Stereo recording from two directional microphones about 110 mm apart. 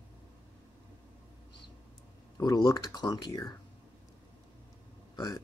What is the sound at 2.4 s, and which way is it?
Speech, 40° left (ahead or behind).